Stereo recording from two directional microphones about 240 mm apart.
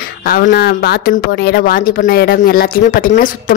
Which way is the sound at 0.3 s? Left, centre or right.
Left.